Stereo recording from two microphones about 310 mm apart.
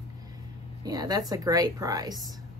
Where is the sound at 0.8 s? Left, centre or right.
Centre.